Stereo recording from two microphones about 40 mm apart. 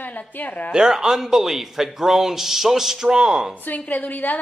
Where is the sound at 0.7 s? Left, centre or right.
Centre.